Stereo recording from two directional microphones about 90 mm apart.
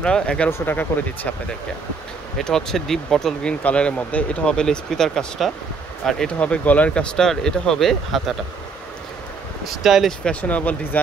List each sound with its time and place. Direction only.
0.0 s speech: 10° left (ahead or behind)
0.5 s speech: 20° left (ahead or behind)
2.3 s speech: 5° left (ahead or behind)
9.8 s speech: 5° right (ahead or behind)
10.2 s speech: 15° left (ahead or behind)